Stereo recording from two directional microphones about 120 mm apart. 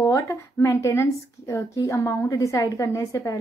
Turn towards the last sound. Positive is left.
turn(degrees=25)  # may be behind; listen again after turning